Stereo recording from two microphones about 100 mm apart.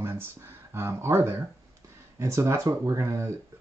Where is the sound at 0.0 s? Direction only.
25° right (ahead or behind).